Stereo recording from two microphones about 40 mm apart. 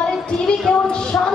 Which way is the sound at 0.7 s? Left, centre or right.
Centre.